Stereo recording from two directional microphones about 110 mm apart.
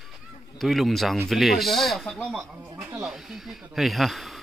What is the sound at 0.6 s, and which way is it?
Speech, centre (ahead or behind).